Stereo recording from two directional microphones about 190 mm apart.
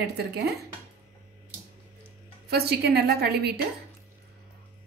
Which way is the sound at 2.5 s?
55° right (ahead or behind).